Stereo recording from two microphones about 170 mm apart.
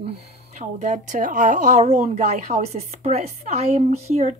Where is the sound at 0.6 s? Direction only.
45° right (ahead or behind).